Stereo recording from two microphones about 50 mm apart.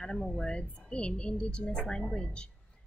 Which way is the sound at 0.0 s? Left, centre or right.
Centre.